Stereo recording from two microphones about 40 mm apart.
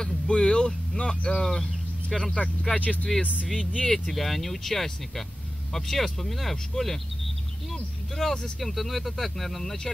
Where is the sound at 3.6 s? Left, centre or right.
Left.